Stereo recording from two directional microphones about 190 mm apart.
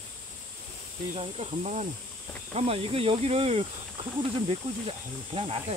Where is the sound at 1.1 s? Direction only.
30° right (ahead or behind).